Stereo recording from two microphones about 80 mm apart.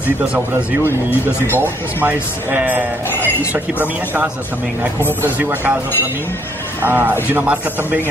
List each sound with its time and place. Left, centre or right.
0.2 s speech: centre
2.0 s speech: right
6.8 s speech: right